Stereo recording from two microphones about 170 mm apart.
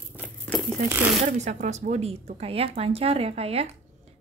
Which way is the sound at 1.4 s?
40° right (ahead or behind).